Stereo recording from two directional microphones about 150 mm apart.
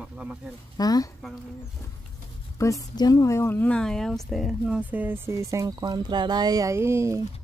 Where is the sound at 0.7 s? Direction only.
25° left (ahead or behind).